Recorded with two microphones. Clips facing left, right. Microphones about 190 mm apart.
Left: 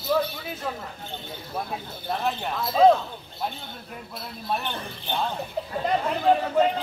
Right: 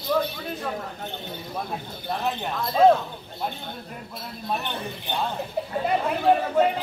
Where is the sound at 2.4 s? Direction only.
Centre (ahead or behind).